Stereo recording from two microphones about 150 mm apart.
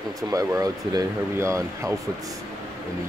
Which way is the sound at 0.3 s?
25° right (ahead or behind).